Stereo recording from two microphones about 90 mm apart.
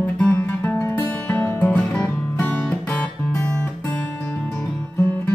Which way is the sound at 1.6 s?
15° left (ahead or behind).